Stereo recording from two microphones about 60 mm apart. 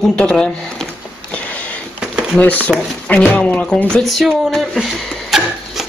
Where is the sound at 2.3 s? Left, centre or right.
Left.